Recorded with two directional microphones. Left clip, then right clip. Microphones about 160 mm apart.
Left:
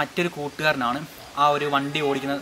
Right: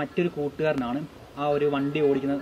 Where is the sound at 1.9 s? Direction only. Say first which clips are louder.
Right 1 dB; 60° left (ahead or behind).